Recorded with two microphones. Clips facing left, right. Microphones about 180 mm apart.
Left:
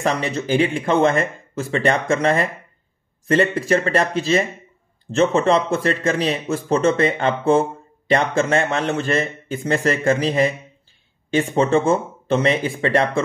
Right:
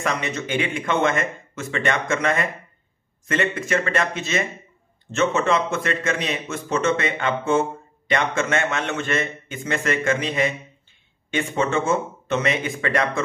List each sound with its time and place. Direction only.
0.0 s speech: 35° left (ahead or behind)